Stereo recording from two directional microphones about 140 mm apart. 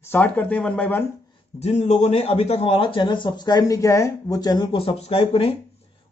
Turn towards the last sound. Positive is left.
turn(degrees=40)  # may be behind; listen again after turning